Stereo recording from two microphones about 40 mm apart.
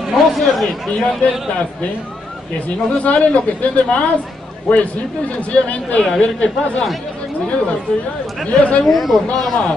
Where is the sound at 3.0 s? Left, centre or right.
Left.